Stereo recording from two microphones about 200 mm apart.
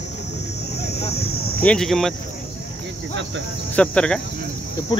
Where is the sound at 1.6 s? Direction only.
5° left (ahead or behind).